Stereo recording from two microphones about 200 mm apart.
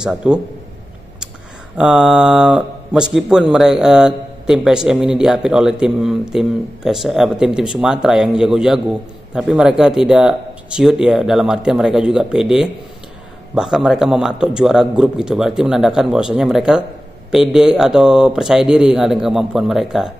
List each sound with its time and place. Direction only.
0.0 s speech: 5° right (ahead or behind)
1.8 s speech: 5° right (ahead or behind)